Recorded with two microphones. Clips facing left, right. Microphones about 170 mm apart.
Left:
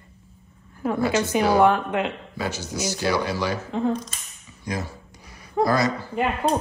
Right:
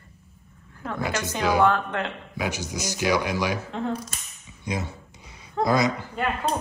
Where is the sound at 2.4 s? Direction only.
15° right (ahead or behind).